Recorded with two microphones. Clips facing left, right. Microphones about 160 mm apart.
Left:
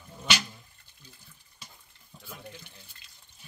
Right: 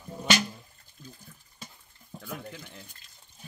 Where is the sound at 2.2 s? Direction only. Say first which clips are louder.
Right 5 dB; 55° right (ahead or behind).